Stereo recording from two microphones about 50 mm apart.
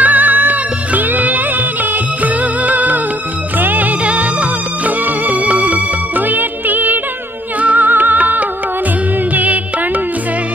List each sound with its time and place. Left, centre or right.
0.0 s music: right